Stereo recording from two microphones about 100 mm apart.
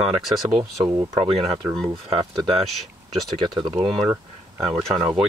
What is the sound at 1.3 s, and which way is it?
Speech, 75° right (ahead or behind).